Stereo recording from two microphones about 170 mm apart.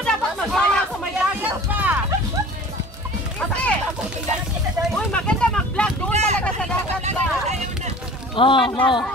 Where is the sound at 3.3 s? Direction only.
5° left (ahead or behind).